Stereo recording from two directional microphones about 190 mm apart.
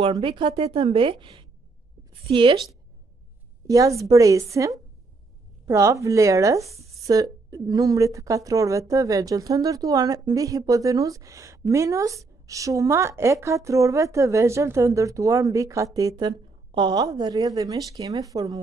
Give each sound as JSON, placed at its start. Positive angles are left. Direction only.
{"t": 0.0, "sound": "a woman's voice", "side_deg": -25}
{"t": 3.6, "sound": "a woman's voice", "side_deg": -15}